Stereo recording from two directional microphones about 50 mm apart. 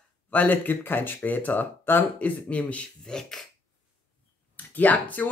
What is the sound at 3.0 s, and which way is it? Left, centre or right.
Speech, centre.